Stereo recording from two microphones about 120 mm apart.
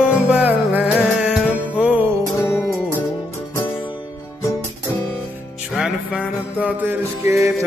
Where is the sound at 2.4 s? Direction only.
15° left (ahead or behind).